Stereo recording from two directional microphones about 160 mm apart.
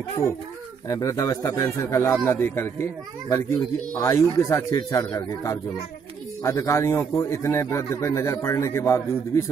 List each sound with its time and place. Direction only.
0.8 s a man's voice: 20° left (ahead or behind)